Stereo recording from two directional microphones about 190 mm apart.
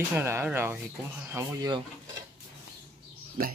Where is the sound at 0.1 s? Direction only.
15° right (ahead or behind).